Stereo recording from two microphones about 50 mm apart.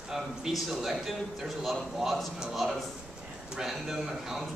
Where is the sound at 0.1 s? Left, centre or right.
Centre.